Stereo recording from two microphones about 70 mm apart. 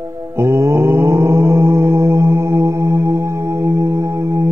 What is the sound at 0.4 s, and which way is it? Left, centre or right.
Mantra, right.